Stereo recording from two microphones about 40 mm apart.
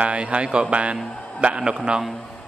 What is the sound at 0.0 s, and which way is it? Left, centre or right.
A man's voice, right.